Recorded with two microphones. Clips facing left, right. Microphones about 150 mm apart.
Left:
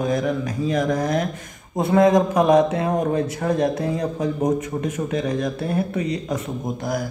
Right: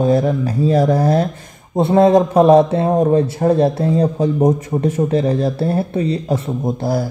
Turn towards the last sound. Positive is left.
turn(degrees=-30)  # may be behind; listen again after turning